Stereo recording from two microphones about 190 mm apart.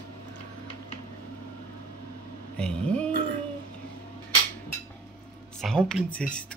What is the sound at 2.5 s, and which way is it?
Speech, 5° left (ahead or behind).